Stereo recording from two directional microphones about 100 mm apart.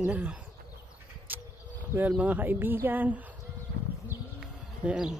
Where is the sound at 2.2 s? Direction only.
15° right (ahead or behind).